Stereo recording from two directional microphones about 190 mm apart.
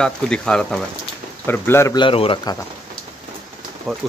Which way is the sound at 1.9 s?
25° left (ahead or behind).